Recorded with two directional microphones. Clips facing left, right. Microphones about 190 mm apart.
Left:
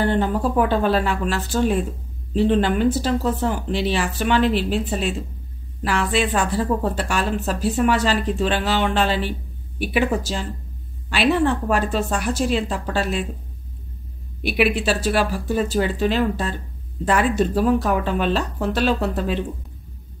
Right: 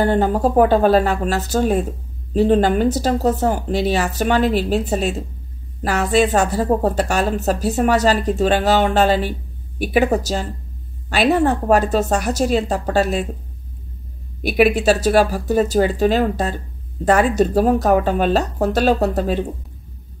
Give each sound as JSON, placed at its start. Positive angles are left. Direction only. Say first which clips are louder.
{"t": 0.0, "sound": "a woman's voice", "louder": "right 4 dB", "side_deg": -45}
{"t": 14.4, "sound": "a woman's voice", "louder": "right 5 dB", "side_deg": -45}